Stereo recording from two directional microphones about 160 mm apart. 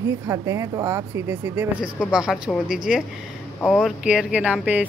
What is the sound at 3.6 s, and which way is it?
Speech, 5° left (ahead or behind).